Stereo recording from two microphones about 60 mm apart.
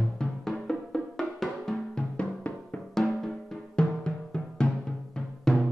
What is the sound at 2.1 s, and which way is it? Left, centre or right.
Music, left.